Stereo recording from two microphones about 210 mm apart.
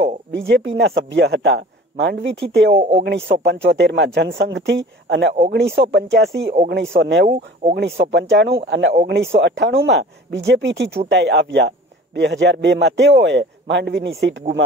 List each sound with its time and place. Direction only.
0.3 s a man's voice: 55° right (ahead or behind)
2.7 s speech: 25° right (ahead or behind)
3.3 s a man's voice: 60° right (ahead or behind)
6.4 s speech: 35° right (ahead or behind)
7.0 s a man's voice: 60° right (ahead or behind)